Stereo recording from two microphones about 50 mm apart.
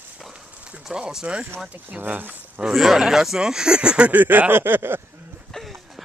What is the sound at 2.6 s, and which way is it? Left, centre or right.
Speech, centre.